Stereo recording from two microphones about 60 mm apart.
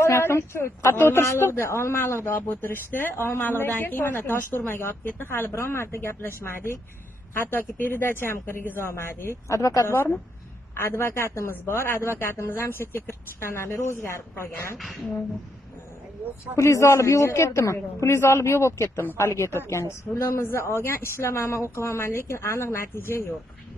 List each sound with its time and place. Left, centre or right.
0.0 s a man's voice: left
2.6 s speech: left
9.5 s a woman's voice: left
10.7 s a man's voice: left
16.5 s a man's voice: left
20.2 s a man's voice: left